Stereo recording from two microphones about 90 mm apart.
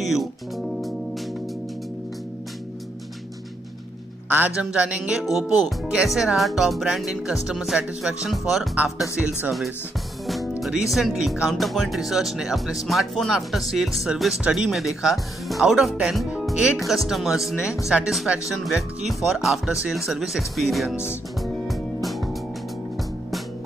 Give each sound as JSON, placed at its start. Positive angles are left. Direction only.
{"t": 0.0, "sound": "speech", "side_deg": 0}
{"t": 4.5, "sound": "speech", "side_deg": -10}
{"t": 5.2, "sound": "speech", "side_deg": 0}
{"t": 10.2, "sound": "music", "side_deg": 0}
{"t": 10.6, "sound": "speech", "side_deg": -5}
{"t": 20.9, "sound": "speech", "side_deg": 25}
{"t": 21.4, "sound": "music", "side_deg": 0}